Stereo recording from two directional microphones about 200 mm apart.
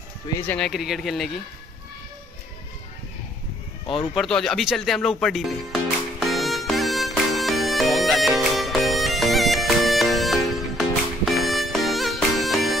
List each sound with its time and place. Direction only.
0.6 s speech: centre (ahead or behind)
3.8 s speech: 25° left (ahead or behind)
4.1 s music: centre (ahead or behind)